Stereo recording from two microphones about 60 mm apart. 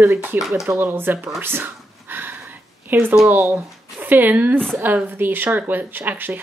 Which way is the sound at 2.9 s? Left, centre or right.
Right.